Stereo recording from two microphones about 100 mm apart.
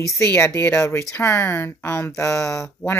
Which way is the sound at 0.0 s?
30° left (ahead or behind).